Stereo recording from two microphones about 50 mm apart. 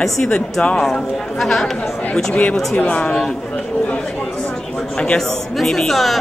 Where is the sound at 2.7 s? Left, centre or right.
Left.